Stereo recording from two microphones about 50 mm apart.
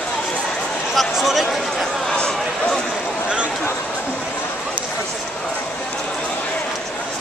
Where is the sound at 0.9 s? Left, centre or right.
Centre.